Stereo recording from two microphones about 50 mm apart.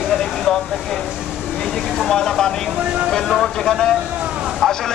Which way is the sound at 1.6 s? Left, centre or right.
Centre.